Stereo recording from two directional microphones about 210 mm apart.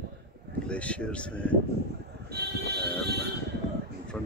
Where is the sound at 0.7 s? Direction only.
5° left (ahead or behind).